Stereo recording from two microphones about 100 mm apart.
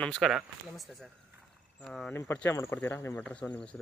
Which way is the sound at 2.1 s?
25° left (ahead or behind).